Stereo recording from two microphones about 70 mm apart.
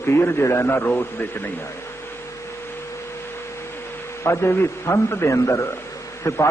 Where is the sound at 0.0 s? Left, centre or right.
Left.